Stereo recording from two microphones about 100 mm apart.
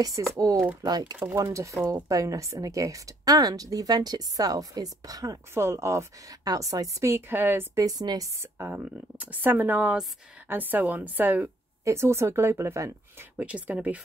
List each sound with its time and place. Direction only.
0.3 s a woman's voice: 30° right (ahead or behind)
5.5 s a woman's voice: 25° right (ahead or behind)
7.8 s a woman's voice: 40° right (ahead or behind)
8.4 s a woman's voice: 25° right (ahead or behind)
8.7 s a woman's voice: 15° right (ahead or behind)
13.4 s speech: 15° right (ahead or behind)